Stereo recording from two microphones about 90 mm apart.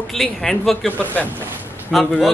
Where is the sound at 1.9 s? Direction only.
Centre (ahead or behind).